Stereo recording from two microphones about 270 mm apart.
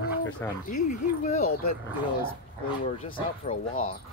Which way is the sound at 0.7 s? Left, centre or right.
Left.